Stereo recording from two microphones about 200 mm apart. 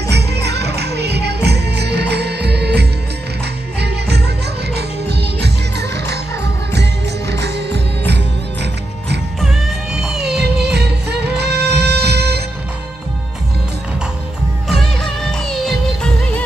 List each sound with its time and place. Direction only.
0.1 s music: 55° right (ahead or behind)
4.7 s music: 55° right (ahead or behind)
9.4 s music: centre (ahead or behind)
10.4 s music: 55° right (ahead or behind)
14.7 s music: centre (ahead or behind)